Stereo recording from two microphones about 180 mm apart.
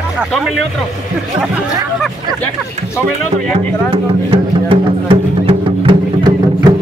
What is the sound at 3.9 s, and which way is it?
Music, 30° right (ahead or behind).